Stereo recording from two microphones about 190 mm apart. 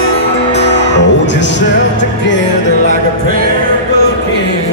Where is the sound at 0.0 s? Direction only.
65° left (ahead or behind).